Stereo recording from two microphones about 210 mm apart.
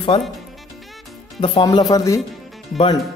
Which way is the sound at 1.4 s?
25° left (ahead or behind).